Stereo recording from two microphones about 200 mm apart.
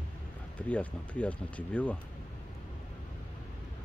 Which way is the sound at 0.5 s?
5° left (ahead or behind).